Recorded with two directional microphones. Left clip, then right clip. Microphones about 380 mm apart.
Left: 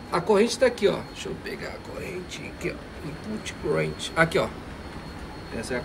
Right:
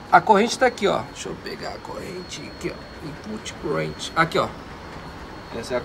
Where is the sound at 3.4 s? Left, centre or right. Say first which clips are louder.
Even; centre.